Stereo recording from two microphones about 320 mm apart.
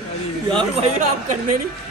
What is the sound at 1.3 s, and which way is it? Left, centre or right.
Speech, right.